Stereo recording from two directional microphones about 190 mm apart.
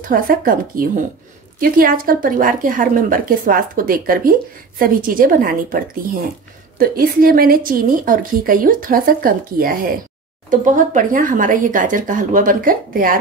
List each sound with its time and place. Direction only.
0.0 s a woman's voice: 50° right (ahead or behind)
6.8 s a woman's voice: 50° right (ahead or behind)